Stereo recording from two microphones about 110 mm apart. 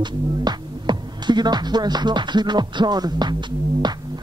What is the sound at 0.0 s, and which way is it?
Speech, 40° right (ahead or behind).